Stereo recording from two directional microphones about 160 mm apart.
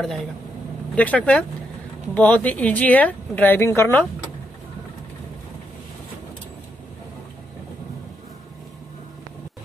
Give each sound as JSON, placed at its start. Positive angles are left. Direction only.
{"t": 0.0, "sound": "speech", "side_deg": 0}